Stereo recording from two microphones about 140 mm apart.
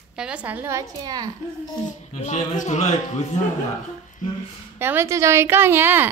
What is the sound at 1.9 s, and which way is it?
A man's voice, 55° left (ahead or behind).